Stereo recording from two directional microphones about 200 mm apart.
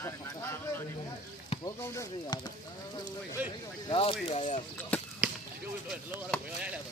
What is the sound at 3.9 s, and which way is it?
Speech, 25° left (ahead or behind).